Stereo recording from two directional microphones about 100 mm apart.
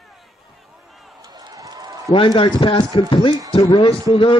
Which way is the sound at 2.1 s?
60° left (ahead or behind).